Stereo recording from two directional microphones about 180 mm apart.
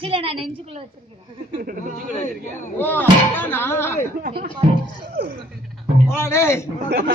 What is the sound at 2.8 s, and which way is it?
Speech, 10° left (ahead or behind).